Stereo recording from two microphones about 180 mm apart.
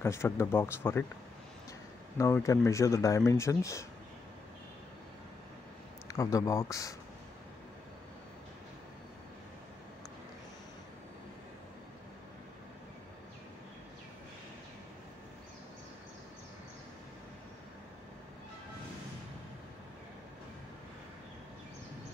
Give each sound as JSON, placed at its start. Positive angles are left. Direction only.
{"t": 0.0, "sound": "speech", "side_deg": 15}
{"t": 2.1, "sound": "speech", "side_deg": 15}
{"t": 6.0, "sound": "speech", "side_deg": 15}